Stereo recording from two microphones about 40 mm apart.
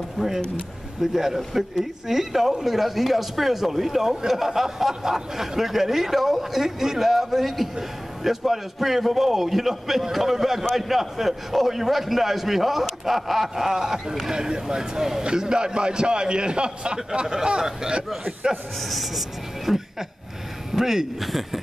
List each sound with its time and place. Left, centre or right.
0.2 s a man's voice: centre
18.5 s a man's voice: centre